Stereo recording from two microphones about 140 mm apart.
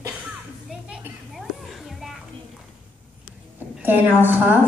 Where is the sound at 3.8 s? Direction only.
15° right (ahead or behind).